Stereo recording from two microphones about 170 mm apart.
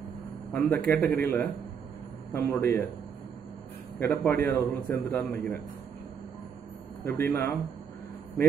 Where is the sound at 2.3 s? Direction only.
20° left (ahead or behind).